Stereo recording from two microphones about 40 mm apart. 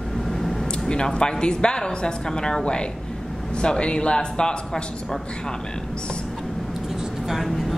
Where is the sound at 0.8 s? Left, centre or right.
Left.